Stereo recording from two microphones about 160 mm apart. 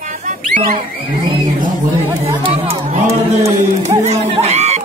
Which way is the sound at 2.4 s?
40° right (ahead or behind).